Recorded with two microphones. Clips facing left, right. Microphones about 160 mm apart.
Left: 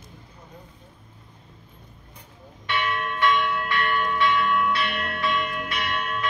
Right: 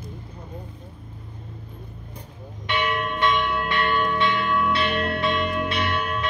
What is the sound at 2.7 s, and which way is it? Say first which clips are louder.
Church bell: right 2 dB; 20° right (ahead or behind).